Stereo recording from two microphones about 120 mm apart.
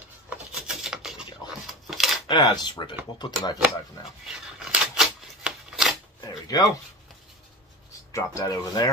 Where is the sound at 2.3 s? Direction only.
40° left (ahead or behind).